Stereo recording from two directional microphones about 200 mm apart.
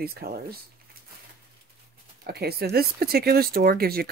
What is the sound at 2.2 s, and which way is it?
Speech, 50° right (ahead or behind).